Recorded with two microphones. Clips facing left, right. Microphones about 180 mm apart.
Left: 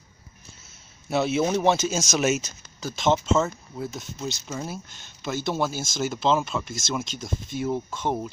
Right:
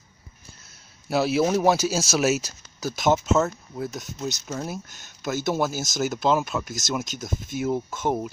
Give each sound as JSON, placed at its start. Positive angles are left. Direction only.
{"t": 1.1, "sound": "speech", "side_deg": 0}